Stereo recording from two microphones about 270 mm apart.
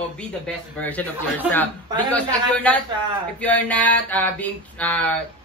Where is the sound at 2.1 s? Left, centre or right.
Centre.